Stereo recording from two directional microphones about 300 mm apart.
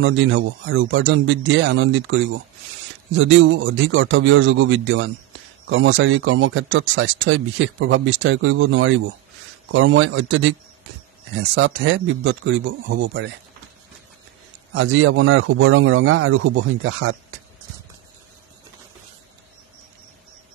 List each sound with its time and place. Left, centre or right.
0.0 s speech: right
11.5 s speech: right
14.7 s speech: right